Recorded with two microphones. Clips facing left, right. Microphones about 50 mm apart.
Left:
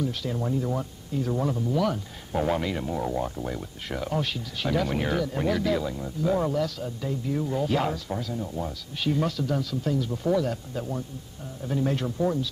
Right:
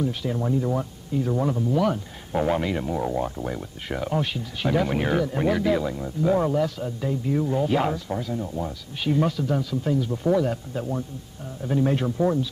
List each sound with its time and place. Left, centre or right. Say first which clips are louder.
0.0 s speech: right 3 dB; centre